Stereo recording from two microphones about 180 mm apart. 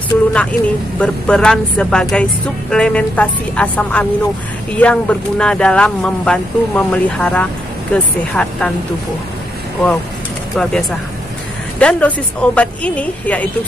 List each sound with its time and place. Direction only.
0.3 s a woman's voice: 5° left (ahead or behind)
10.5 s speech: 5° left (ahead or behind)
11.8 s a woman's voice: 5° left (ahead or behind)